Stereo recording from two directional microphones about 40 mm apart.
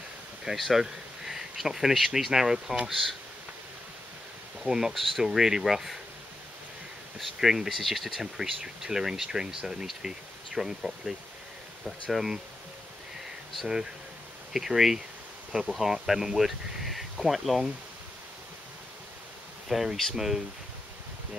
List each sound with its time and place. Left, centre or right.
0.6 s speech: centre
2.9 s speech: centre
4.6 s speech: centre
7.3 s speech: centre
14.5 s speech: centre
19.7 s speech: centre